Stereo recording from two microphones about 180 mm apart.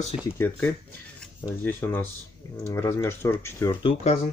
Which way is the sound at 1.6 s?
10° left (ahead or behind).